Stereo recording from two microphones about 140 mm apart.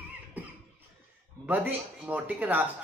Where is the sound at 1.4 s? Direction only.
15° right (ahead or behind).